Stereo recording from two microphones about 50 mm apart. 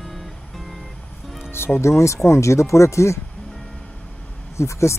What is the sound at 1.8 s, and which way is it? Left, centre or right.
Speech, left.